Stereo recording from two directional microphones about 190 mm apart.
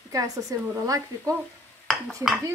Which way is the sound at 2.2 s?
15° right (ahead or behind).